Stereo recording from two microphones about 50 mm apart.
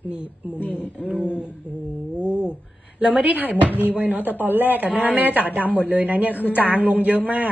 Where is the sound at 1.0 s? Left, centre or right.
Right.